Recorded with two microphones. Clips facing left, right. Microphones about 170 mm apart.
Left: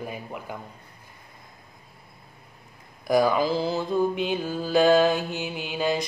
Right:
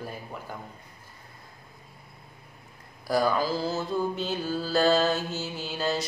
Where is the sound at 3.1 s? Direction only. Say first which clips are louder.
Left 4 dB; 15° left (ahead or behind).